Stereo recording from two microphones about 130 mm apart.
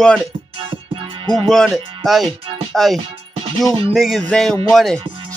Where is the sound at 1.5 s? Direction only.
Centre (ahead or behind).